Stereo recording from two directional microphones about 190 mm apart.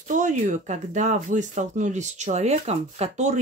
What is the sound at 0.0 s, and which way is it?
Speech, 40° right (ahead or behind).